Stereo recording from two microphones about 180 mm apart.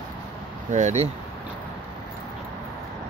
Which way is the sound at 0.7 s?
40° right (ahead or behind).